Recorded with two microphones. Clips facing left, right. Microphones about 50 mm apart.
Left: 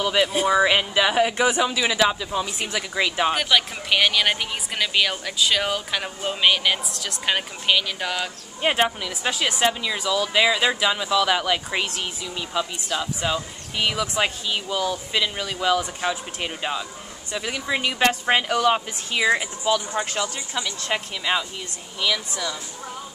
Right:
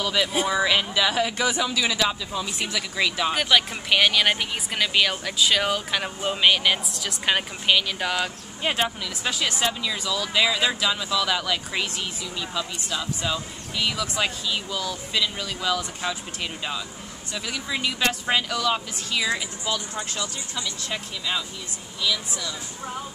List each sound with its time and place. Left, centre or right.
0.0 s speech: left
3.3 s speech: centre
8.6 s speech: left